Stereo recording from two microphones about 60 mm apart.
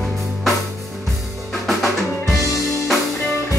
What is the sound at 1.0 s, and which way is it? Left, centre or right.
Drum kit, centre.